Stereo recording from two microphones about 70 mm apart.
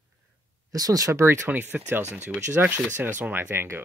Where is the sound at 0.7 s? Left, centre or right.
Right.